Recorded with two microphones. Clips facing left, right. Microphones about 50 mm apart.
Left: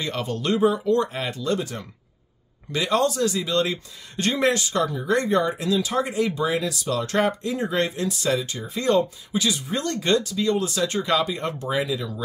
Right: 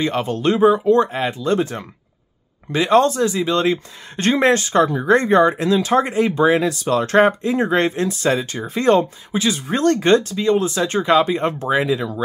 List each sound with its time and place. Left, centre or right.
0.0 s speech: right